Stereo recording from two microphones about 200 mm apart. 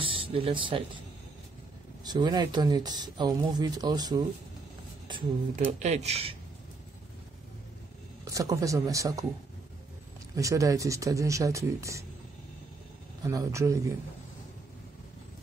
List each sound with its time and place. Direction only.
0.0 s speech: 25° right (ahead or behind)
2.0 s speech: 20° right (ahead or behind)
5.7 s speech: 35° right (ahead or behind)
8.3 s speech: 15° right (ahead or behind)
10.3 s speech: 15° right (ahead or behind)
13.3 s speech: 15° right (ahead or behind)